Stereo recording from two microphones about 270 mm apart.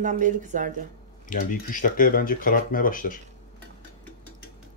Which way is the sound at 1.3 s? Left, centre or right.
Left.